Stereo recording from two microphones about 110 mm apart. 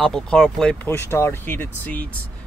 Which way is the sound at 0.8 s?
25° left (ahead or behind).